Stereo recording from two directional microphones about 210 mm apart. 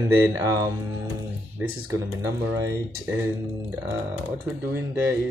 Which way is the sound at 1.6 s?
10° right (ahead or behind).